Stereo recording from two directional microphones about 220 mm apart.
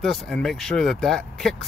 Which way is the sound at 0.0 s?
Centre (ahead or behind).